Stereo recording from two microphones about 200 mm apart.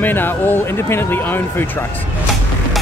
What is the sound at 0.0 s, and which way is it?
Speech, 10° left (ahead or behind).